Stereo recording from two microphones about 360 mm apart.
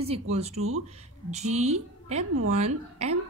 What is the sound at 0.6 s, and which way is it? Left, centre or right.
Speech, right.